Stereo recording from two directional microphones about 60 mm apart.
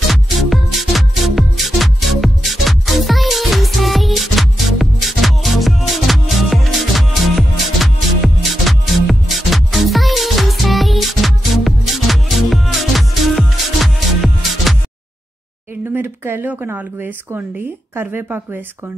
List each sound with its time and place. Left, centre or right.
0.1 s music: centre
15.9 s a sound: right
16.6 s speech: right